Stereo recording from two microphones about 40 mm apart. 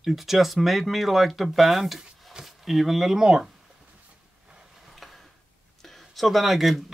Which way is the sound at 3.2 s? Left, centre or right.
Centre.